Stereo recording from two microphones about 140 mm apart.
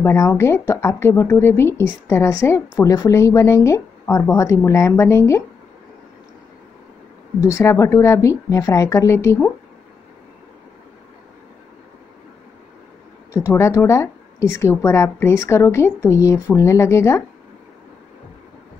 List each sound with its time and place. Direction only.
0.0 s a woman's voice: 20° left (ahead or behind)
7.4 s a woman's voice: 20° left (ahead or behind)
13.3 s a woman's voice: 20° left (ahead or behind)